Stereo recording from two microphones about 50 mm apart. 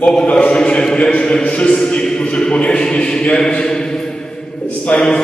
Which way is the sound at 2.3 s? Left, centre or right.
Left.